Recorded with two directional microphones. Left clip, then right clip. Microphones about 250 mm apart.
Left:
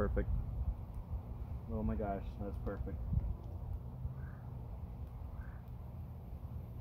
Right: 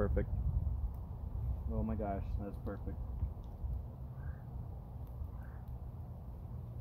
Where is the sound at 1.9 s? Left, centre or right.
Centre.